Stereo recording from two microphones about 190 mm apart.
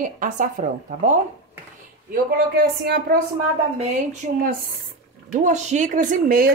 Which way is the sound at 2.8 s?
60° right (ahead or behind).